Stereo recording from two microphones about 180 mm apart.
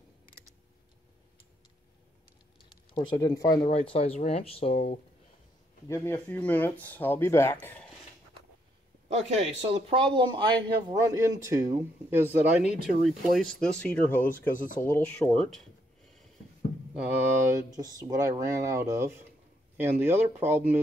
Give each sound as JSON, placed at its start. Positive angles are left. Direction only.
{"t": 2.9, "sound": "speech", "side_deg": 25}
{"t": 3.6, "sound": "speech", "side_deg": 30}
{"t": 5.9, "sound": "speech", "side_deg": 10}
{"t": 9.1, "sound": "speech", "side_deg": -40}
{"t": 14.5, "sound": "speech", "side_deg": 50}
{"t": 14.9, "sound": "speech", "side_deg": 5}
{"t": 16.9, "sound": "speech", "side_deg": -5}
{"t": 17.7, "sound": "speech", "side_deg": -20}